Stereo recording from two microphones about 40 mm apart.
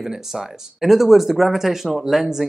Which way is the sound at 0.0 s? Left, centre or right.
Centre.